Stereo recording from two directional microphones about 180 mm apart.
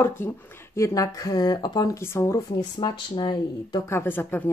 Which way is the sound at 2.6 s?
30° left (ahead or behind).